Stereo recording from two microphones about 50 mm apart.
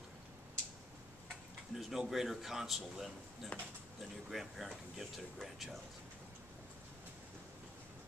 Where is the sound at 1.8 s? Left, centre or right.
Centre.